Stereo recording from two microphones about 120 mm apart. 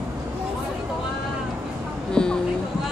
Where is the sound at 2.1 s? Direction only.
5° left (ahead or behind).